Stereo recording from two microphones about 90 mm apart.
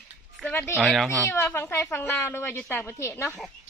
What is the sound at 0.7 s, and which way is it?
Speech, centre (ahead or behind).